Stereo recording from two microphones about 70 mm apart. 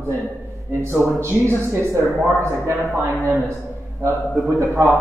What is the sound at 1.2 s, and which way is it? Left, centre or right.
A man's voice, right.